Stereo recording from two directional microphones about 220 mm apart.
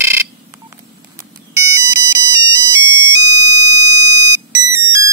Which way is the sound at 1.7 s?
15° right (ahead or behind).